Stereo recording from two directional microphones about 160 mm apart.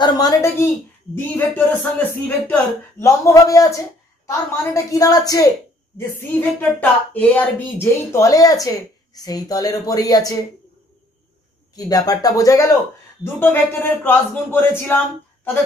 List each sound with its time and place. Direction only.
0.0 s speech: 20° left (ahead or behind)
5.9 s speech: 10° left (ahead or behind)
11.7 s speech: 25° left (ahead or behind)